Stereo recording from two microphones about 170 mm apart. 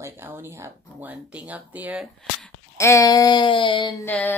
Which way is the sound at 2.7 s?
20° left (ahead or behind).